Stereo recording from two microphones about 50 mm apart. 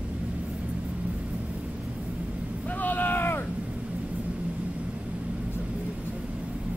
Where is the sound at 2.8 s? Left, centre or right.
Left.